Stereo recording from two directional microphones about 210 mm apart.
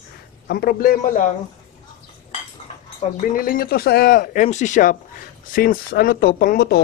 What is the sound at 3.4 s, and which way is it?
Speech, 45° left (ahead or behind).